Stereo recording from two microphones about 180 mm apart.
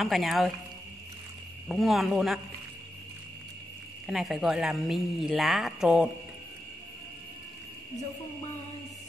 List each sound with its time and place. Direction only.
0.0 s speech: centre (ahead or behind)
1.7 s speech: centre (ahead or behind)
4.1 s speech: centre (ahead or behind)